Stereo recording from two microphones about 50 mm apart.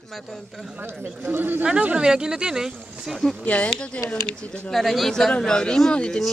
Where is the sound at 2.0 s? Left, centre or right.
Centre.